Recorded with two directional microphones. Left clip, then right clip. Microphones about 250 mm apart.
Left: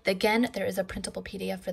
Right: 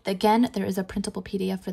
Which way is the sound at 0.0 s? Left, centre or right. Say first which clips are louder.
Right 3 dB; centre.